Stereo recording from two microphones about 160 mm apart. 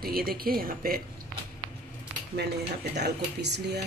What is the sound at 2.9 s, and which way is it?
Speech, 90° right.